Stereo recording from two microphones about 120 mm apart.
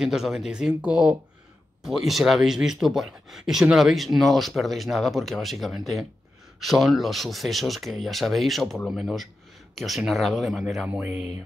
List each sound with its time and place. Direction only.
0.0 s speech: 5° right (ahead or behind)
10.9 s speech: 15° right (ahead or behind)